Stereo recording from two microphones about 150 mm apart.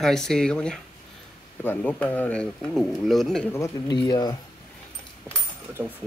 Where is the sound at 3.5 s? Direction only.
20° left (ahead or behind).